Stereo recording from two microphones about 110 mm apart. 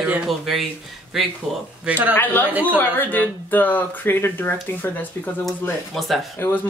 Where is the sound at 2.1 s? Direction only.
15° left (ahead or behind).